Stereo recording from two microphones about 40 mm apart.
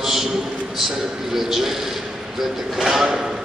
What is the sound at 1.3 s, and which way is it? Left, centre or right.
A man's voice, centre.